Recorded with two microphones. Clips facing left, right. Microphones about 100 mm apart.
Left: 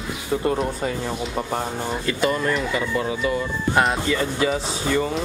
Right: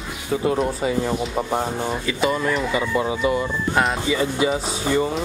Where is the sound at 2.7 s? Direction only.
20° right (ahead or behind).